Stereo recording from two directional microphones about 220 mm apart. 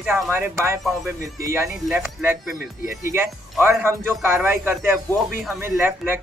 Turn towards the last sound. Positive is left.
turn(degrees=-10)  # may be behind; listen again after turning